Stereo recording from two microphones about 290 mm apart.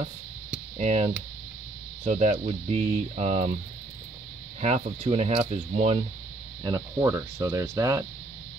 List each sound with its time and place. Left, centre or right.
0.7 s speech: right
4.6 s speech: right
6.6 s speech: centre